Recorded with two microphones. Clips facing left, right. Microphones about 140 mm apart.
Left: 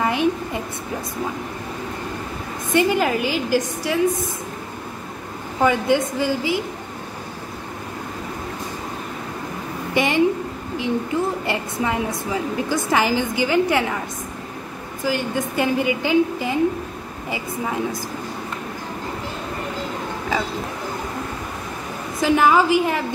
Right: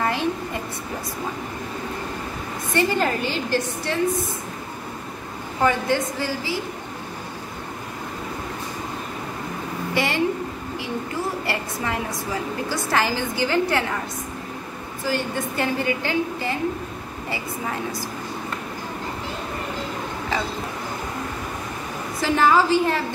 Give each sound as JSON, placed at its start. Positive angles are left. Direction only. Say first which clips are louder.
{"t": 0.0, "sound": "a sound", "louder": "left 4 dB", "side_deg": 15}
{"t": 2.7, "sound": "a woman's voice", "louder": "left 3 dB", "side_deg": 15}
{"t": 5.6, "sound": "a woman's voice", "louder": "left 3 dB", "side_deg": 15}
{"t": 9.9, "sound": "a sound", "louder": "left 5 dB", "side_deg": 20}
{"t": 11.4, "sound": "a woman's voice", "louder": "left 3 dB", "side_deg": 15}
{"t": 15.0, "sound": "a woman's voice", "louder": "left 2 dB", "side_deg": 15}
{"t": 22.2, "sound": "a woman's voice", "louder": "left 2 dB", "side_deg": 15}